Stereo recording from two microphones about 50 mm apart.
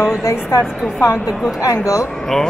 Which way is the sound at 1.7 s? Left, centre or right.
Left.